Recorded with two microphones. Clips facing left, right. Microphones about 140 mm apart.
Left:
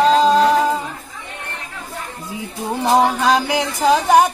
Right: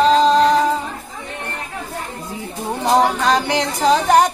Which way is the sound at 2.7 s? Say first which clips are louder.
Even; 5° left (ahead or behind).